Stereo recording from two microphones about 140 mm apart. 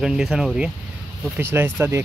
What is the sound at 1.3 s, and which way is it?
Speech, 15° right (ahead or behind).